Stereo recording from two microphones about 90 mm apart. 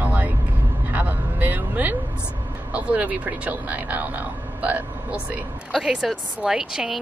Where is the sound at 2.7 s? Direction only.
15° right (ahead or behind).